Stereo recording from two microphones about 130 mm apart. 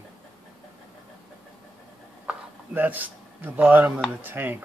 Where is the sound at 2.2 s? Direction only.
15° right (ahead or behind).